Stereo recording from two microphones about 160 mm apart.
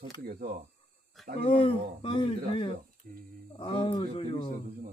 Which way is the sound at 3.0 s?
60° right (ahead or behind).